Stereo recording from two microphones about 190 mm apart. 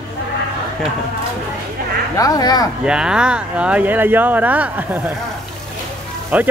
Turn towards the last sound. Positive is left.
turn(degrees=-5)  # may be behind; listen again after turning